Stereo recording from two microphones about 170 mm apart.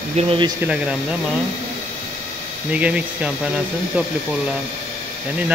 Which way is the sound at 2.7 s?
10° right (ahead or behind).